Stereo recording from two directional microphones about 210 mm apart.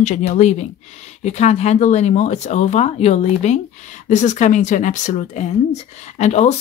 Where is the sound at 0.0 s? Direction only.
35° left (ahead or behind).